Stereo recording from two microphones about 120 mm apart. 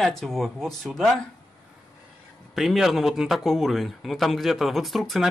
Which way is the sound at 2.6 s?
Centre (ahead or behind).